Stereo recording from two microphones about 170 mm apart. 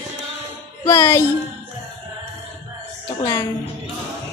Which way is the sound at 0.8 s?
15° left (ahead or behind).